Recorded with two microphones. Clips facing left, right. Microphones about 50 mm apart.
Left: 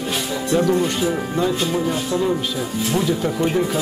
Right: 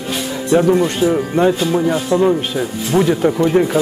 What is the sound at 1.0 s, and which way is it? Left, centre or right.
Speech, right.